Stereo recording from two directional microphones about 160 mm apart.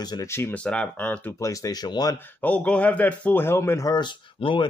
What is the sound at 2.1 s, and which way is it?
Speech, 10° left (ahead or behind).